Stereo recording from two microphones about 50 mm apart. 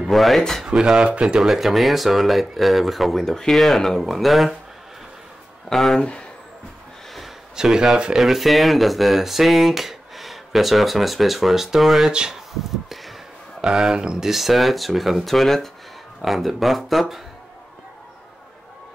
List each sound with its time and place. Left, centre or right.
0.0 s speech: centre
0.7 s speech: centre
5.7 s speech: centre
5.9 s speech: left
7.5 s speech: centre
12.1 s speech: centre
13.6 s speech: centre